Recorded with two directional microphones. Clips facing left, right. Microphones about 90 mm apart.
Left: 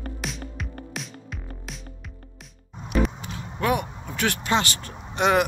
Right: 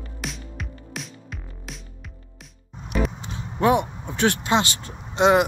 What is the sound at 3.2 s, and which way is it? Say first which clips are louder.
Speech: right 5 dB; 25° right (ahead or behind).